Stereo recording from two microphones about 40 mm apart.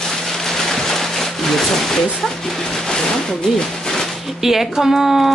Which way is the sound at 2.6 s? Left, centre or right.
Centre.